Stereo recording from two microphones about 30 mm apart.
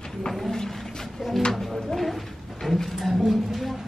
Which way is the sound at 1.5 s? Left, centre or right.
Centre.